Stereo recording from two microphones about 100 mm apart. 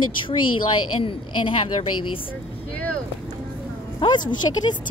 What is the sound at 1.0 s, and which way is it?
Speech, 60° left (ahead or behind).